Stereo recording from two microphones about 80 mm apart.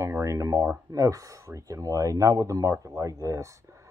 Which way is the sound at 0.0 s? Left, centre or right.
Right.